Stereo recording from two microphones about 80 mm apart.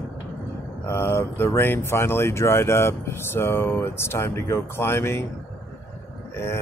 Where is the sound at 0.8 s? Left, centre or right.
Left.